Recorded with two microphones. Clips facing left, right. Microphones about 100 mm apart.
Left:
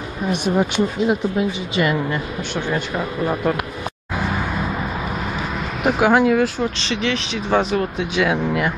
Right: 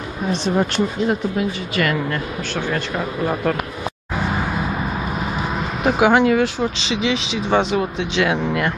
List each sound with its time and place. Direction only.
0.3 s a woman's voice: 15° left (ahead or behind)
3.0 s speech: centre (ahead or behind)
5.9 s speech: centre (ahead or behind)